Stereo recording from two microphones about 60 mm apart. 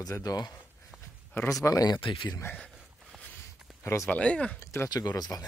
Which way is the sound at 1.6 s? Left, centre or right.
Left.